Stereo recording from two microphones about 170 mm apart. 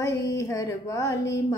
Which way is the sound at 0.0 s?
20° left (ahead or behind).